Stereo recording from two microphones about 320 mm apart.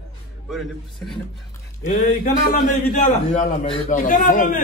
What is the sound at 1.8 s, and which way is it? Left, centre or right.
A man's voice, left.